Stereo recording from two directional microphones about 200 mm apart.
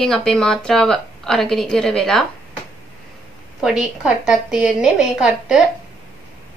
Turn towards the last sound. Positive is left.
turn(degrees=-5)  # may be behind; listen again after turning